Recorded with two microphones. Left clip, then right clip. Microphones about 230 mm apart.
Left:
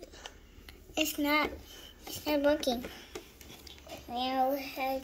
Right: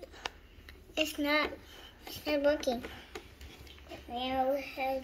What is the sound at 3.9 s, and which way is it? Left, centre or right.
A child's voice, left.